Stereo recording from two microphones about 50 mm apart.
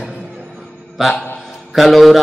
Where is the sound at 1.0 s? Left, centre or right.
Centre.